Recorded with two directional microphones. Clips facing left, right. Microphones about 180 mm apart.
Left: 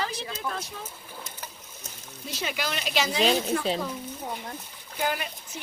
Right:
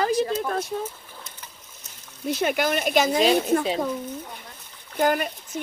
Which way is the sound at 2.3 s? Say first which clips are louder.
Right 9 dB; 55° right (ahead or behind).